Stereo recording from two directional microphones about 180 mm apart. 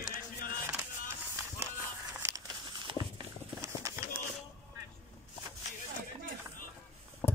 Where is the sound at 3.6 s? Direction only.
15° right (ahead or behind).